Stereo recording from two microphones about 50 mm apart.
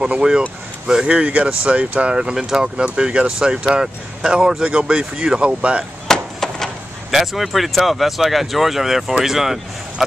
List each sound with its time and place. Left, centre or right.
0.0 s speech: centre
2.1 s speech: centre
6.0 s a sound: centre
7.1 s speech: centre